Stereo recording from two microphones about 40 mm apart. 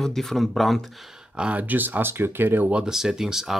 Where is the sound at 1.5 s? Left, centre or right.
Right.